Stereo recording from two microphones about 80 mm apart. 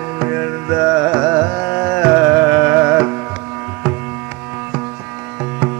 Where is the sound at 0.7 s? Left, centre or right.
Right.